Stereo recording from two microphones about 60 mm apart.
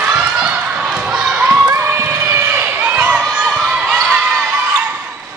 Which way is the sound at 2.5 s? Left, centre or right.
Right.